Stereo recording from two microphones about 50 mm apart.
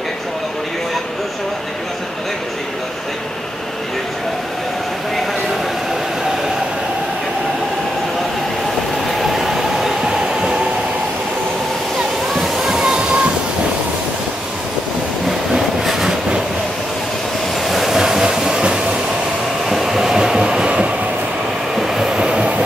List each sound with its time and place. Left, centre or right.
9.2 s train: centre
12.6 s music: centre
15.2 s train: centre
17.6 s train: centre
18.2 s a sound: centre
19.7 s train: centre
21.7 s train: centre
22.2 s train: centre